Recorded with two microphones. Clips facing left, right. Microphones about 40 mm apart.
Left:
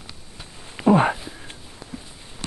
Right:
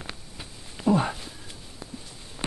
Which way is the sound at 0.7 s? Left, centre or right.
Left.